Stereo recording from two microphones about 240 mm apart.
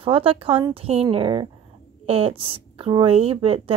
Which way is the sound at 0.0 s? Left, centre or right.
Right.